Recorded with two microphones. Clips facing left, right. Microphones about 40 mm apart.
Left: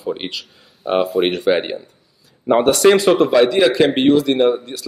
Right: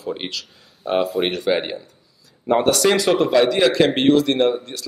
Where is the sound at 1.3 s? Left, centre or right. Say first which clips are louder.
Left 4 dB; left.